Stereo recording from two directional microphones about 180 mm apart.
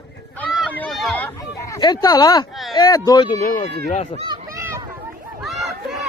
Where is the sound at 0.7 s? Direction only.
5° left (ahead or behind).